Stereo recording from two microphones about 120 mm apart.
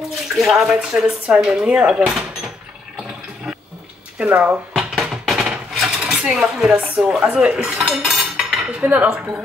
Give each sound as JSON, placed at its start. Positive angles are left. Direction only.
{"t": 0.4, "sound": "speech", "side_deg": 0}
{"t": 3.5, "sound": "water", "side_deg": 0}
{"t": 4.2, "sound": "dishes", "side_deg": -10}